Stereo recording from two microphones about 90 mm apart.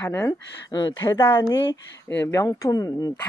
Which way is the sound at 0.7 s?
50° left (ahead or behind).